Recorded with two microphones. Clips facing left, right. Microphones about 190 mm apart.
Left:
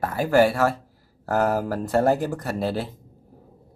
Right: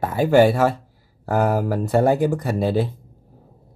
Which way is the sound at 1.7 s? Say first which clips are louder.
Right 3 dB; 10° right (ahead or behind).